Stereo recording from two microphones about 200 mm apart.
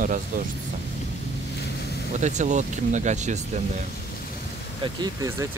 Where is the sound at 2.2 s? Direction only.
35° right (ahead or behind).